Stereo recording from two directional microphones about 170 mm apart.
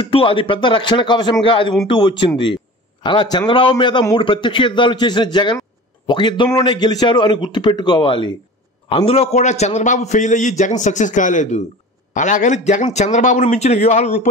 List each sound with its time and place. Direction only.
0.0 s a man's voice: 30° left (ahead or behind)